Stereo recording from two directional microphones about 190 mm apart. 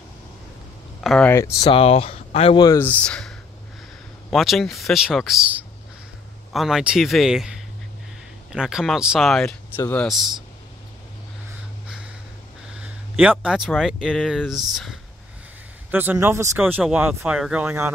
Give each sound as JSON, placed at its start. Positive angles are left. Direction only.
{"t": 1.0, "sound": "speech", "side_deg": 0}
{"t": 1.3, "sound": "speech", "side_deg": 15}
{"t": 1.7, "sound": "speech", "side_deg": 30}
{"t": 12.7, "sound": "speech", "side_deg": -5}